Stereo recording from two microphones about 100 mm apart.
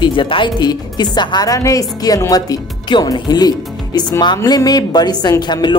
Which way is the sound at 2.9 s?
50° left (ahead or behind).